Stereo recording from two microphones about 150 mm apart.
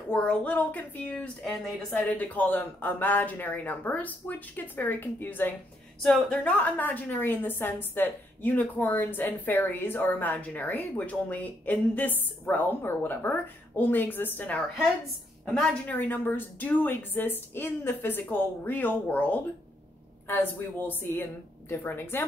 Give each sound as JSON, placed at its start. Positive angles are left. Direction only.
{"t": 0.1, "sound": "a woman's voice", "side_deg": 10}